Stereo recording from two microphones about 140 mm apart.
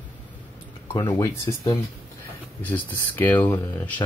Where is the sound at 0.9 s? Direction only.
30° left (ahead or behind).